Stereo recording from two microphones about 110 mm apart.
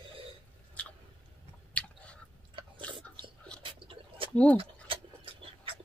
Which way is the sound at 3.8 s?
55° right (ahead or behind).